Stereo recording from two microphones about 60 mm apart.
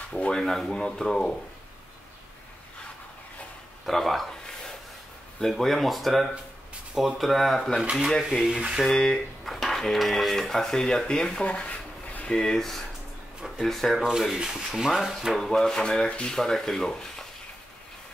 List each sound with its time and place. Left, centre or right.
0.1 s speech: centre
3.8 s a sound: centre
5.4 s speech: centre
8.5 s speech: centre
8.8 s speech: centre
12.3 s speech: centre
14.0 s speech: centre